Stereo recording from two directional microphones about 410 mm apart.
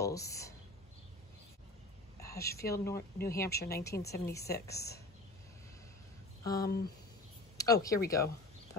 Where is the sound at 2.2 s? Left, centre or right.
Centre.